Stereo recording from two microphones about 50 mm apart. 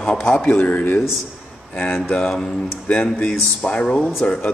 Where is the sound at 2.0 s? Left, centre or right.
Centre.